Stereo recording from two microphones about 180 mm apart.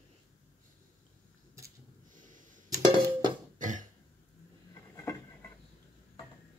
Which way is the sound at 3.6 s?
45° right (ahead or behind).